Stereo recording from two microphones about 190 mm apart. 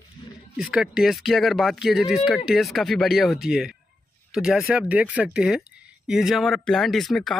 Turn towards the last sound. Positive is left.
turn(degrees=0)  # may be behind; listen again after turning